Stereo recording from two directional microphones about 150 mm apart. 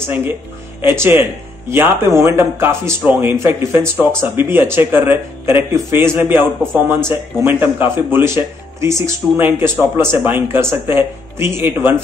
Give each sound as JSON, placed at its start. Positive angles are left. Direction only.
{"t": 0.0, "sound": "speech", "side_deg": -10}